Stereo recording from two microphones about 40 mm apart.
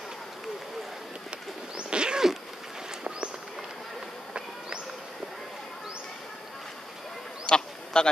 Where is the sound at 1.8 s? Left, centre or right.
Right.